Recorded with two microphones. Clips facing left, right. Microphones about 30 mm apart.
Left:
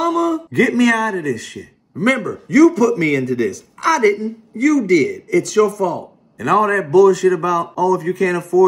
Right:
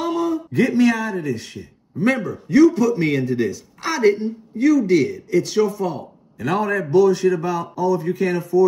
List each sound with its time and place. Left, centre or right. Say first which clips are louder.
0.0 s speech: left 4 dB; left
6.6 s speech: left 4 dB; left